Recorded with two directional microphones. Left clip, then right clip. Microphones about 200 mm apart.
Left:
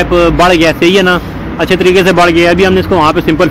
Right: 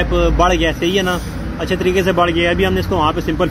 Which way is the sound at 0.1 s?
30° left (ahead or behind).